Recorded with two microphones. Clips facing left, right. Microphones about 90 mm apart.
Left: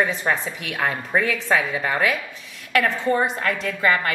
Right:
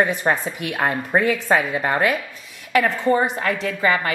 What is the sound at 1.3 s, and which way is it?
A woman's voice, 5° right (ahead or behind).